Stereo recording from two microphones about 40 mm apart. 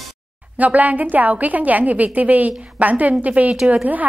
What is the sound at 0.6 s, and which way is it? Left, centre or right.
A woman's voice, right.